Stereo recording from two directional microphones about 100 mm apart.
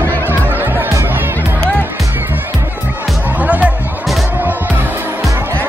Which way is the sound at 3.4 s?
15° right (ahead or behind).